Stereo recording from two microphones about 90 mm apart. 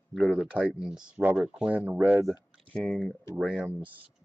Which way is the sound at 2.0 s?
20° right (ahead or behind).